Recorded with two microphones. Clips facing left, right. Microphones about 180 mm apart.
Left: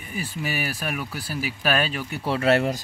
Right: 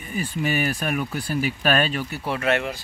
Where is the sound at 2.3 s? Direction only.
35° left (ahead or behind).